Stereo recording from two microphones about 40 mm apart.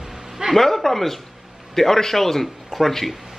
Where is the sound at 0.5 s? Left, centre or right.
Centre.